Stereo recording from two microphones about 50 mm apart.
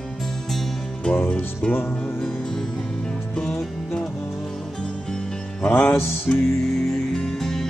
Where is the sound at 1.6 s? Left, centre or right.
Left.